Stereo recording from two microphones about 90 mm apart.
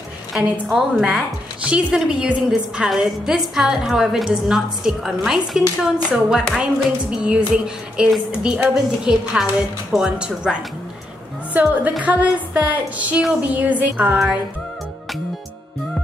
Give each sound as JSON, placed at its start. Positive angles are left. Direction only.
{"t": 0.3, "sound": "a woman's voice", "side_deg": -5}
{"t": 9.1, "sound": "a woman's voice", "side_deg": -5}
{"t": 13.5, "sound": "a sound", "side_deg": -20}
{"t": 14.1, "sound": "a woman's voice", "side_deg": -15}